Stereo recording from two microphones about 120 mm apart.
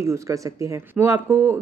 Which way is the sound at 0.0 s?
25° right (ahead or behind).